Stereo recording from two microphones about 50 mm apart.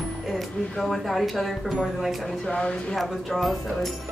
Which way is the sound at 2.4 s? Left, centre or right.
Centre.